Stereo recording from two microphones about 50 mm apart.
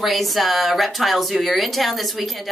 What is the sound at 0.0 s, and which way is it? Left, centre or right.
Speech, centre.